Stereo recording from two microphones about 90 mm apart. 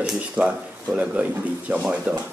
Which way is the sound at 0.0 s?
10° right (ahead or behind).